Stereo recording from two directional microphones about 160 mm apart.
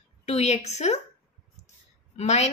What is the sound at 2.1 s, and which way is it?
Speech, 45° left (ahead or behind).